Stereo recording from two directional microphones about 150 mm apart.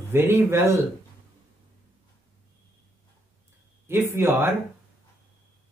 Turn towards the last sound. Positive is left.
turn(degrees=-15)  # may be behind; listen again after turning